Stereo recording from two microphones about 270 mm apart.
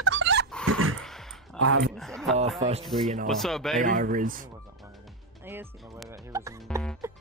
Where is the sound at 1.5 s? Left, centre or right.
Right.